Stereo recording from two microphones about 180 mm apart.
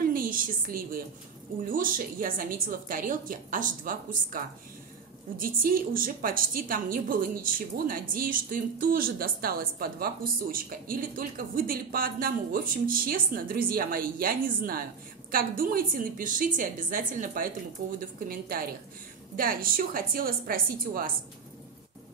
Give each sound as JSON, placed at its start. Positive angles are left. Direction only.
{"t": 0.1, "sound": "a woman's voice", "side_deg": -50}
{"t": 19.3, "sound": "a woman's voice", "side_deg": -55}